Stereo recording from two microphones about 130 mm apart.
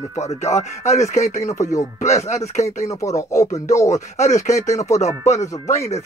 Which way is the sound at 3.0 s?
25° left (ahead or behind).